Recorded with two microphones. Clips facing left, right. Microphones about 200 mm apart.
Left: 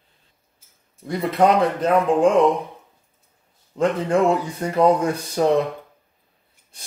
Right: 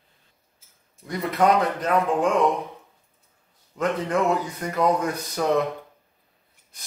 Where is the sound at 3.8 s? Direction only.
30° left (ahead or behind).